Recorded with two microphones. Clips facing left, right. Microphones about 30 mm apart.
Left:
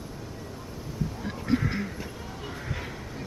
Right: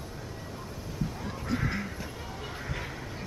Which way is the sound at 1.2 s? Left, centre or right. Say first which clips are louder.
Left 8 dB; centre.